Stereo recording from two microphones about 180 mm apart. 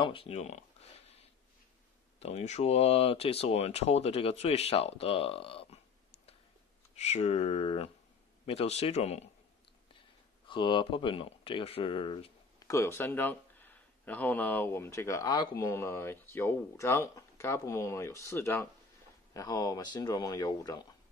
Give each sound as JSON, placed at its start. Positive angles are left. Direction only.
{"t": 0.0, "sound": "a sound", "side_deg": 30}
{"t": 2.1, "sound": "speech", "side_deg": 35}
{"t": 12.5, "sound": "speech", "side_deg": 15}